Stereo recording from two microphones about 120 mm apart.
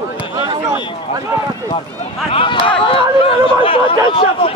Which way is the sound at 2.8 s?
50° left (ahead or behind).